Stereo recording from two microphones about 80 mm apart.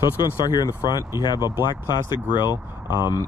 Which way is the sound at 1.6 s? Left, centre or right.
Left.